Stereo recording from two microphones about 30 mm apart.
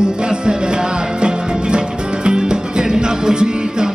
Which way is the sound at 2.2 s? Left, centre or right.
Right.